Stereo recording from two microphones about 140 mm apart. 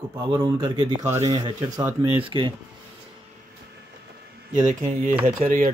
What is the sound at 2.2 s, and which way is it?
Speech, 35° right (ahead or behind).